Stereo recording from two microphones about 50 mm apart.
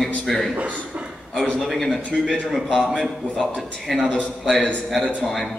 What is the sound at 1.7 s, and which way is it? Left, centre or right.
A man's voice, centre.